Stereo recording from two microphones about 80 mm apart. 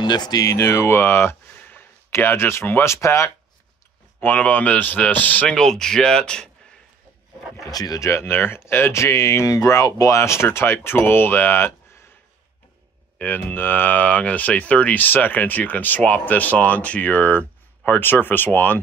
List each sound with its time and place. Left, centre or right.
0.0 s speech: left
0.4 s speech: left
4.2 s speech: left
7.7 s speech: left
8.1 s speech: left
13.2 s speech: left